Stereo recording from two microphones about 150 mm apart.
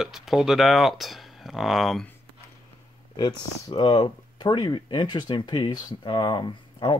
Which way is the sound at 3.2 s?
30° left (ahead or behind).